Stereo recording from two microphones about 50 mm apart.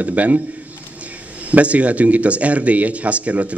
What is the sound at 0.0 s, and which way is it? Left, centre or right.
Speech, right.